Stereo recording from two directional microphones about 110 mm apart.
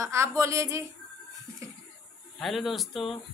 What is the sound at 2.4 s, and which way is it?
Speech, centre (ahead or behind).